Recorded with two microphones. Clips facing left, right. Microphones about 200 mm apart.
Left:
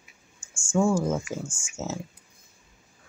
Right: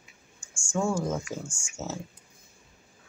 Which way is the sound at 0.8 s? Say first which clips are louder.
Left 4 dB; 10° left (ahead or behind).